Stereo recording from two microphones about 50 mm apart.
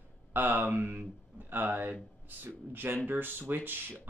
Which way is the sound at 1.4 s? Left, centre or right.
Right.